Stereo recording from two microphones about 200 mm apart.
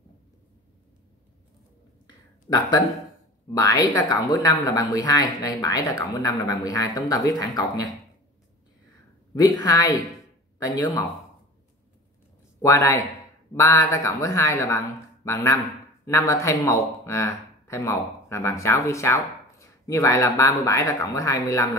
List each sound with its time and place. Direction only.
3.5 s speech: 20° left (ahead or behind)
9.7 s speech: 20° left (ahead or behind)
12.6 s speech: 15° left (ahead or behind)